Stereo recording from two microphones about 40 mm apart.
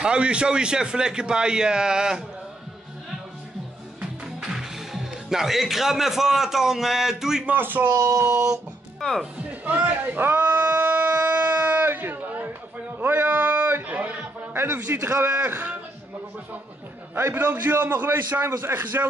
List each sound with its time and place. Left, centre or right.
0.0 s a man's voice: right
4.4 s speech: centre
7.5 s a man's voice: right
9.0 s speech: centre
9.5 s a man's voice: right
10.0 s a sound: right
11.6 s music: right
13.0 s a sound: right
14.5 s a man's voice: right
17.1 s a man's voice: right